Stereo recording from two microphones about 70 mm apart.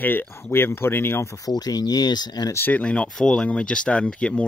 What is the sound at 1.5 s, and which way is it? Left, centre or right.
Speech, left.